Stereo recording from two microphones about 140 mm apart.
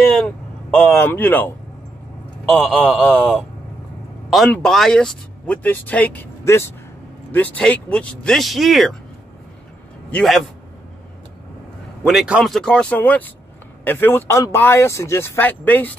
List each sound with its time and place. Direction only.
0.7 s speech: 10° left (ahead or behind)
2.5 s speech: centre (ahead or behind)
10.1 s speech: centre (ahead or behind)
12.0 s speech: 5° right (ahead or behind); by 15.9 s 10° left (ahead or behind)